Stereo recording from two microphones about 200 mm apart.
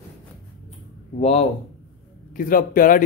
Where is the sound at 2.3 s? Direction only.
45° left (ahead or behind).